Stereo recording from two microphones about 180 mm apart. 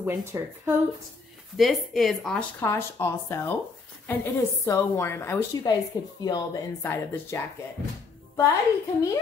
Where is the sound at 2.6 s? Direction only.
15° left (ahead or behind).